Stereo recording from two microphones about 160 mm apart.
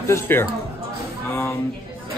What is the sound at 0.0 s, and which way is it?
Speech, 15° left (ahead or behind).